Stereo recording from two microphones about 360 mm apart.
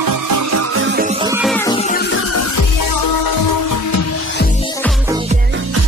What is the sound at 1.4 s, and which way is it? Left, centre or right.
Music, centre.